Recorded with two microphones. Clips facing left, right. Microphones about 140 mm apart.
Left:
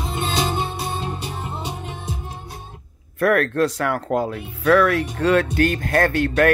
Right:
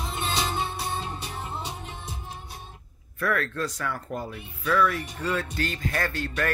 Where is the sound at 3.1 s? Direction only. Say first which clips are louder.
Left 10 dB; 60° left (ahead or behind).